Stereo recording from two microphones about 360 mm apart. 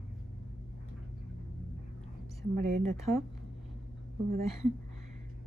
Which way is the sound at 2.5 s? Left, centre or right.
Right.